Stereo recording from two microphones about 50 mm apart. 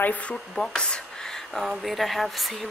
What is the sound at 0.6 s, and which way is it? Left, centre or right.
Speech, centre.